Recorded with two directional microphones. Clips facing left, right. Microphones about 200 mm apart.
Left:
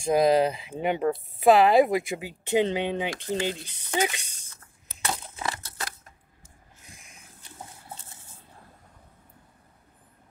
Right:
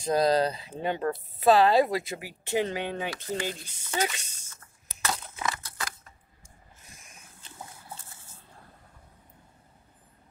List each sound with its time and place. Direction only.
0.0 s speech: 15° left (ahead or behind)
5.0 s crushing: 30° left (ahead or behind)